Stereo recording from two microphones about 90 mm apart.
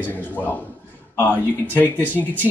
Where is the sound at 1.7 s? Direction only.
20° left (ahead or behind).